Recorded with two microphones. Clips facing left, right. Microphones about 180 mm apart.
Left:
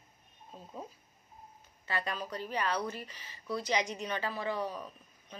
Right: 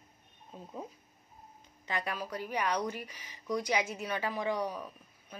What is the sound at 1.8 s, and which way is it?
Speech, 15° right (ahead or behind).